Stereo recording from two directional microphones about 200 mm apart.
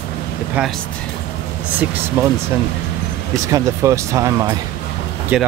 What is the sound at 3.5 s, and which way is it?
Speech, 15° right (ahead or behind).